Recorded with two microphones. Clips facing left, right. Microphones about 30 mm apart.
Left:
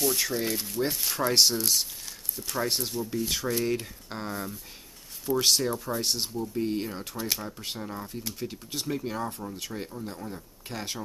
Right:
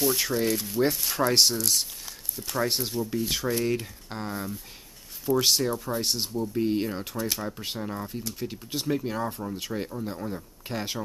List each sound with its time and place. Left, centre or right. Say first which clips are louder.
0.0 s speech: right 3 dB; centre